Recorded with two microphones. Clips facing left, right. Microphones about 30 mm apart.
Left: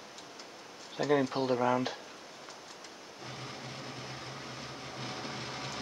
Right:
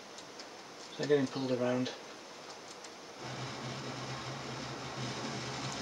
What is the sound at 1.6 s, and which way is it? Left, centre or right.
Speech, left.